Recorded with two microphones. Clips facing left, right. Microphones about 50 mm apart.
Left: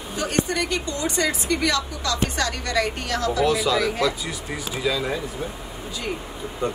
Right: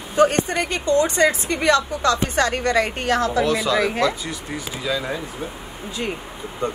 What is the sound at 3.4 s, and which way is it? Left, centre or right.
Speech, centre.